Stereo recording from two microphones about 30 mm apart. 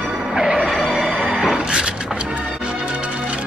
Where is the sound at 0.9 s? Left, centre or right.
Centre.